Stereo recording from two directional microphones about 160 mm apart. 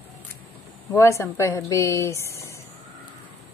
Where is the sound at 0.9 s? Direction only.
20° left (ahead or behind).